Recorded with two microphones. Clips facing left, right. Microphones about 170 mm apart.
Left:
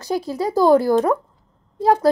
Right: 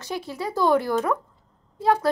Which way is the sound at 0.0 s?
40° left (ahead or behind).